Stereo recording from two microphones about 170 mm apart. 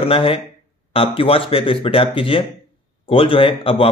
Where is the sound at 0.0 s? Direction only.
30° left (ahead or behind).